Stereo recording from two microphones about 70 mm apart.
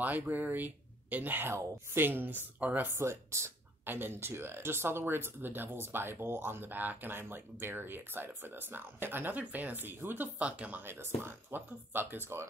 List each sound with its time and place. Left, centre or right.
0.0 s speech: right
2.9 s speech: right
3.8 s speech: right
10.8 s speech: right